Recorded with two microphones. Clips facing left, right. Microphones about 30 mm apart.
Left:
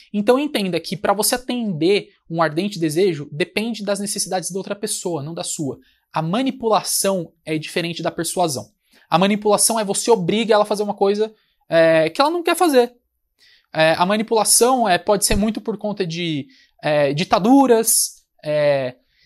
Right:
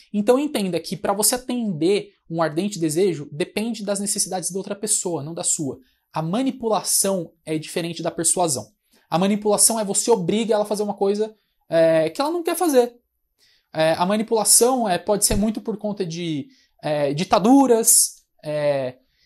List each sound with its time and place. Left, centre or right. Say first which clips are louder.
0.1 s speech: left 2 dB; left
0.7 s speech: left 3 dB; left
9.1 s speech: left 4 dB; left
10.5 s speech: left 7 dB; left
10.8 s speech: left 3 dB; left
13.7 s speech: left 3 dB; left
18.0 s speech: left 4 dB; left